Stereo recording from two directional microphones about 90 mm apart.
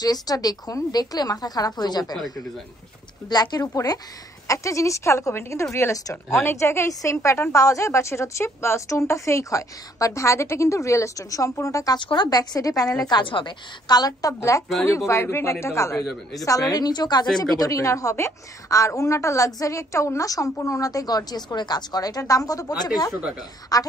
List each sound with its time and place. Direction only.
0.0 s a woman's voice: 45° left (ahead or behind)
2.1 s speech: centre (ahead or behind)
3.3 s a woman's voice: 50° left (ahead or behind)
12.0 s a woman's voice: 65° left (ahead or behind); by 13.0 s 40° left (ahead or behind)
13.1 s a woman's voice: 65° left (ahead or behind); by 16.0 s 35° left (ahead or behind)
16.0 s speech: centre (ahead or behind)
16.4 s a woman's voice: 40° left (ahead or behind)